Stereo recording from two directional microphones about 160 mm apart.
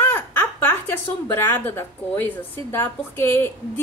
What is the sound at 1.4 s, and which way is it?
A woman's voice, 15° left (ahead or behind).